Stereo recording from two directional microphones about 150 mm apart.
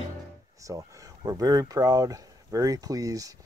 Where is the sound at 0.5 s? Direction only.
20° right (ahead or behind).